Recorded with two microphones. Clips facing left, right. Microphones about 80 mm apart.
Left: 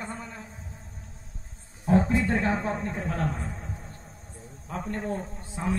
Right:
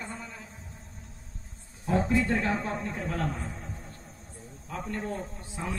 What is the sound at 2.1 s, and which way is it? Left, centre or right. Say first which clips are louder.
A man's voice: left 1 dB; left.